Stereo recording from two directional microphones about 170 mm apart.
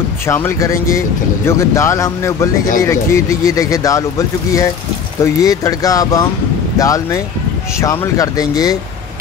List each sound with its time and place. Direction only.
0.3 s speech: 15° left (ahead or behind)